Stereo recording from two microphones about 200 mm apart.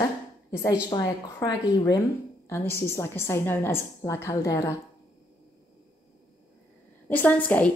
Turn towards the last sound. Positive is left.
turn(degrees=5)  # may be behind; listen again after turning